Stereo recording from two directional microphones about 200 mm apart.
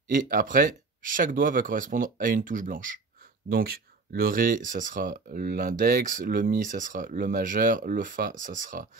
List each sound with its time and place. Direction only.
0.1 s speech: 45° right (ahead or behind)